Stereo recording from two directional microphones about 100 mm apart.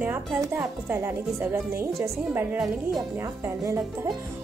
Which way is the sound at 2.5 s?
5° right (ahead or behind).